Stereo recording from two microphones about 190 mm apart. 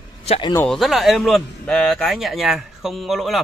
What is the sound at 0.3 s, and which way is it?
Speech, 25° left (ahead or behind).